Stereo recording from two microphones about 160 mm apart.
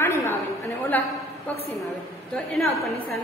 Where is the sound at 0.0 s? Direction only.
15° left (ahead or behind).